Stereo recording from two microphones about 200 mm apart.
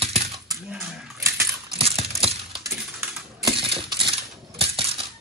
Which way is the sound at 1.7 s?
30° right (ahead or behind).